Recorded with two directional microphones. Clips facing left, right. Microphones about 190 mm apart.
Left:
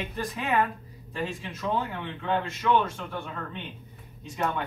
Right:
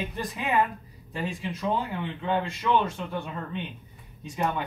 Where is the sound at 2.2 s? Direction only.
15° right (ahead or behind).